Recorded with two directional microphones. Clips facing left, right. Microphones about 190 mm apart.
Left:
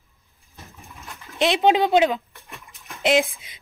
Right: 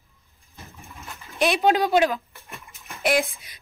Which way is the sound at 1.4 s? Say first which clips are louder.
Left 2 dB; 20° left (ahead or behind).